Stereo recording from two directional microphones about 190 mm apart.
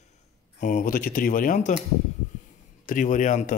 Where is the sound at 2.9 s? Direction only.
40° left (ahead or behind).